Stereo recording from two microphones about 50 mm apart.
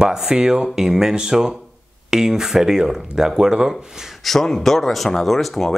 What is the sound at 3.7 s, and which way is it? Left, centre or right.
Speech, centre.